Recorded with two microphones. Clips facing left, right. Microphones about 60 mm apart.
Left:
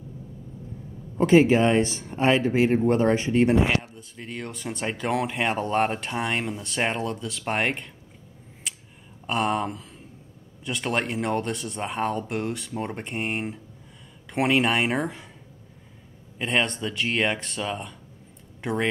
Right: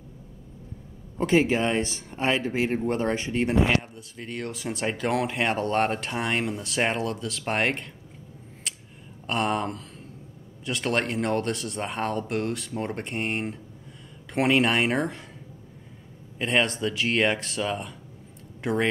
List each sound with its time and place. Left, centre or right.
1.2 s speech: left
2.7 s speech: left
3.2 s speech: centre
3.7 s speech: centre
8.6 s a sound: centre
10.6 s speech: centre
16.3 s speech: centre